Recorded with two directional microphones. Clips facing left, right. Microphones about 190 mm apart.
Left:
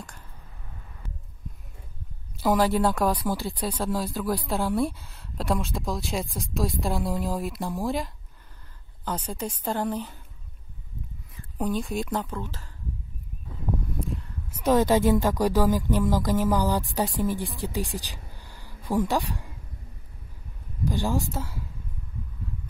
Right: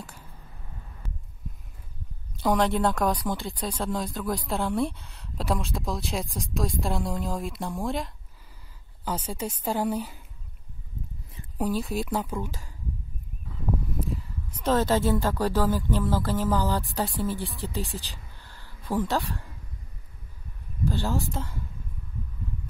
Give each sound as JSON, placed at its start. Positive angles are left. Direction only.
{"t": 0.0, "sound": "a sound", "side_deg": -5}
{"t": 2.3, "sound": "a woman's voice", "side_deg": 5}
{"t": 11.5, "sound": "a woman's voice", "side_deg": -5}
{"t": 13.9, "sound": "a sound", "side_deg": 0}
{"t": 14.6, "sound": "speech", "side_deg": 15}
{"t": 20.8, "sound": "speech", "side_deg": 15}